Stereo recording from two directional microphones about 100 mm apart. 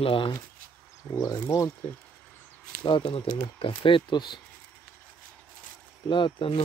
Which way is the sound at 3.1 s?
70° left (ahead or behind).